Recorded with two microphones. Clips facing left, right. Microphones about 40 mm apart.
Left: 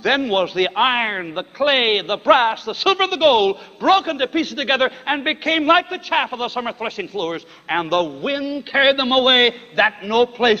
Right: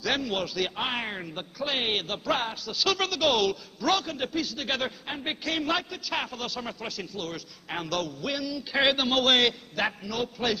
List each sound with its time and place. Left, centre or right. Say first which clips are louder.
0.0 s a man's voice: left 11 dB; left